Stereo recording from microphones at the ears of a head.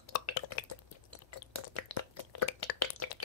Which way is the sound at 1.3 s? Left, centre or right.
Left.